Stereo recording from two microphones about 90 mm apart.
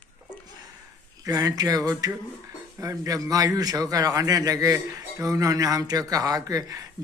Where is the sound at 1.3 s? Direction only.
45° right (ahead or behind).